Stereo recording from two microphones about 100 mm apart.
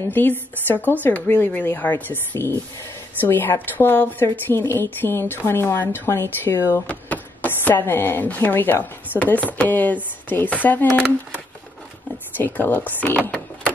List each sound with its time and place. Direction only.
0.1 s a woman's voice: 20° left (ahead or behind)
12.4 s a woman's voice: 20° left (ahead or behind)